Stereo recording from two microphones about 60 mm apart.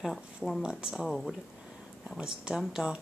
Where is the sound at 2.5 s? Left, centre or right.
Centre.